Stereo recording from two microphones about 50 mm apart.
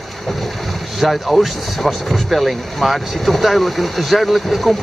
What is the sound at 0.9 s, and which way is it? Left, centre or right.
Speech, centre.